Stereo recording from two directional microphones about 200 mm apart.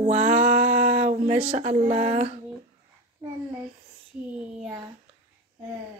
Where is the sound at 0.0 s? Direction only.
35° right (ahead or behind).